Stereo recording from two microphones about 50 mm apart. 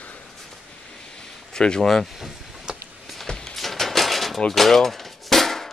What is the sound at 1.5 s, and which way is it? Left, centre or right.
Speech, centre.